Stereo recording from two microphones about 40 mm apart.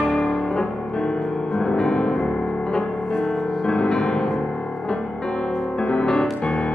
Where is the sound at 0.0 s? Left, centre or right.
Centre.